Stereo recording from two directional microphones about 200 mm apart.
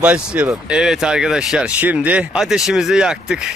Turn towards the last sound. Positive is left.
turn(degrees=-5)  # may be behind; listen again after turning